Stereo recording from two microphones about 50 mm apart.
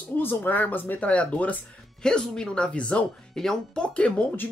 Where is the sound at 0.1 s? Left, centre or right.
Left.